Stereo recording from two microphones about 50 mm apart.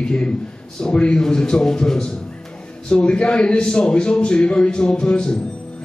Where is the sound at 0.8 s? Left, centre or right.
Centre.